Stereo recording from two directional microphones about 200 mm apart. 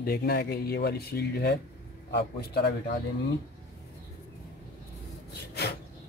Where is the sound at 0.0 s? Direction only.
50° left (ahead or behind).